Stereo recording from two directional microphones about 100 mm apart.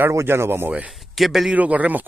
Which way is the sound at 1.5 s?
15° right (ahead or behind).